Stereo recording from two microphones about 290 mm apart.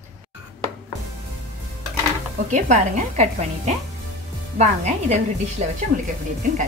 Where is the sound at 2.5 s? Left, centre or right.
Right.